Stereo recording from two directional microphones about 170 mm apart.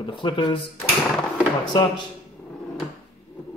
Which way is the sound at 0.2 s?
25° left (ahead or behind).